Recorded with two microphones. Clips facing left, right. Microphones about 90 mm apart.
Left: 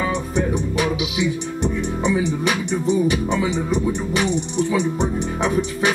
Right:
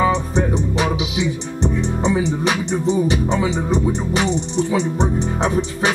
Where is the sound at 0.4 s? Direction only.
25° right (ahead or behind).